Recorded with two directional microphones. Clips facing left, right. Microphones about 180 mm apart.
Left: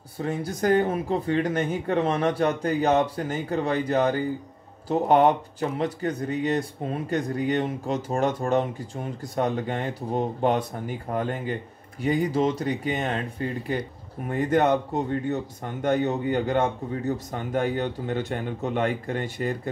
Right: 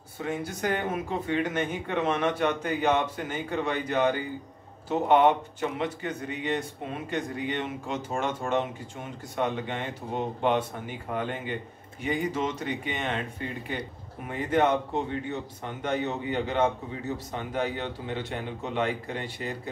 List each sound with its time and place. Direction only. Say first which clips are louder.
0.2 s speech: left 4 dB; 35° left (ahead or behind)